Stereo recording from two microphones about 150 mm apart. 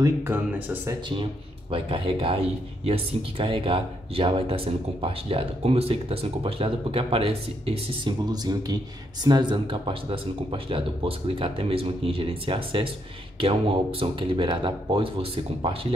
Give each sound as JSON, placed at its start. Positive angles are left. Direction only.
{"t": 0.0, "sound": "speech", "side_deg": -15}
{"t": 1.7, "sound": "speech", "side_deg": -35}